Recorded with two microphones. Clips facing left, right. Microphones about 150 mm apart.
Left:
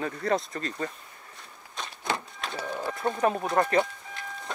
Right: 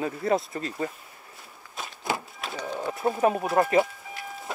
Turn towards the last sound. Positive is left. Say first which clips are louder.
# right 2 dB
turn(degrees=-5)  # may be behind; listen again after turning